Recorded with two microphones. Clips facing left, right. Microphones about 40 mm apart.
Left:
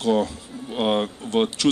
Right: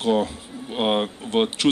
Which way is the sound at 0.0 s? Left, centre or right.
Right.